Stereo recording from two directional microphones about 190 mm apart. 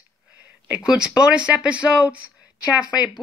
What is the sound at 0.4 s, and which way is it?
Speech, 5° right (ahead or behind).